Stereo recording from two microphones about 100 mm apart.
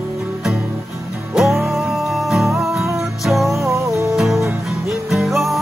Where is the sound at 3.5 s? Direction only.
30° right (ahead or behind).